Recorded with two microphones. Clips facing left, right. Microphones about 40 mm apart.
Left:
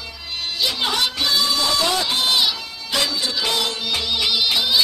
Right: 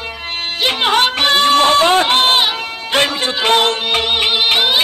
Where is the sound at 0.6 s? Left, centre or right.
Right.